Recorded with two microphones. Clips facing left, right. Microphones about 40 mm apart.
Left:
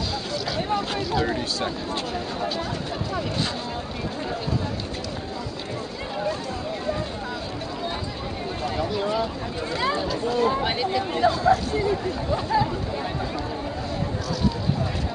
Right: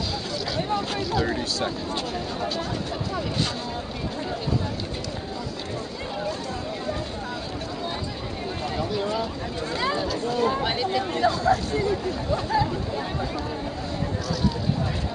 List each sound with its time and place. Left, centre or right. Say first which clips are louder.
0.6 s speech: even; centre
8.7 s a sound: left 2 dB; centre
9.8 s speech: left 1 dB; centre